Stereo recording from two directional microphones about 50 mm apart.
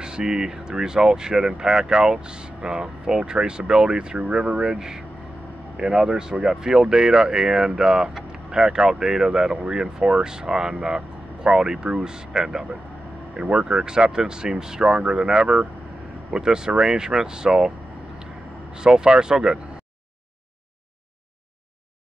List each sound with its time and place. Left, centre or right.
0.0 s speech: centre
18.2 s vehicle: centre